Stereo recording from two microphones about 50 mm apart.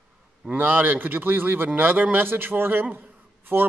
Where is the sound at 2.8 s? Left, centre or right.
Right.